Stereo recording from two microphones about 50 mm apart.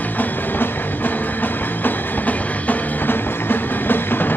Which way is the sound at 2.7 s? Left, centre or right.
Left.